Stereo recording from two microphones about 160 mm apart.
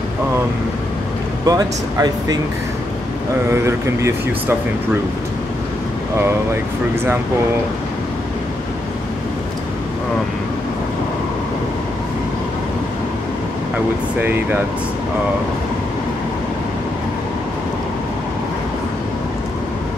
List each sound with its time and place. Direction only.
1.4 s speech: 25° right (ahead or behind)
3.4 s speech: 20° right (ahead or behind)
14.2 s speech: 10° right (ahead or behind)